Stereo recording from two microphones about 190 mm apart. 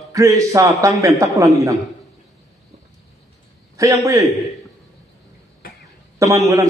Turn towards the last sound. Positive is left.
turn(degrees=-15)  # may be behind; listen again after turning